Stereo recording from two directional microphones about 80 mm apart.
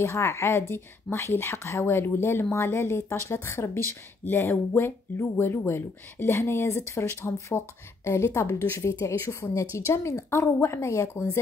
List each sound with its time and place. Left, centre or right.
0.0 s speech: left